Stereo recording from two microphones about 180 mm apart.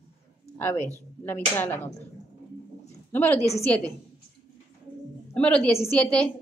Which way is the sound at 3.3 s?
35° left (ahead or behind).